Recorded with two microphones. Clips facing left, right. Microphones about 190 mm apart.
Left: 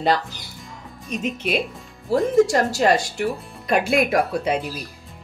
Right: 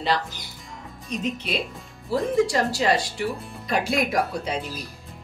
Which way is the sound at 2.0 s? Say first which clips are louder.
Left 5 dB; 45° left (ahead or behind).